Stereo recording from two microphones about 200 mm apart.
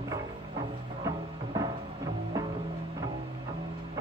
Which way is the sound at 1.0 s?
20° right (ahead or behind).